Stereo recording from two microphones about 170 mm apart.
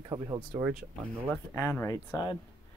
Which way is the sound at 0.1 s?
25° right (ahead or behind).